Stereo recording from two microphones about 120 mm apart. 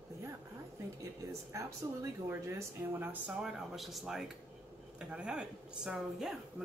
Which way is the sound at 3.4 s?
Centre (ahead or behind).